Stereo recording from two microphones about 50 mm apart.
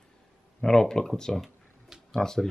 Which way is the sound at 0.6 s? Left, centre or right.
Centre.